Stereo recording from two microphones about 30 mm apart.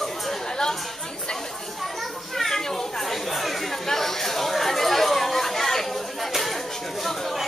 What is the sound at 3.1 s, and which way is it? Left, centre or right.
Speech, centre.